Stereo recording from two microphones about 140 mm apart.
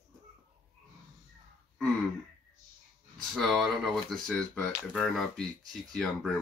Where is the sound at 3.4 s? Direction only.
Centre (ahead or behind).